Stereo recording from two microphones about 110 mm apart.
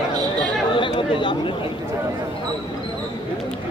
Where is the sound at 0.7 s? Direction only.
50° left (ahead or behind).